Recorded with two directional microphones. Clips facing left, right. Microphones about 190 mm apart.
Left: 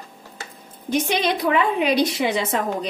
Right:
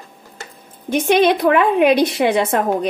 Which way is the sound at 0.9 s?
55° right (ahead or behind).